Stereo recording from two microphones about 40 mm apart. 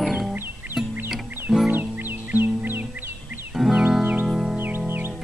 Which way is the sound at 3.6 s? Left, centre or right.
Centre.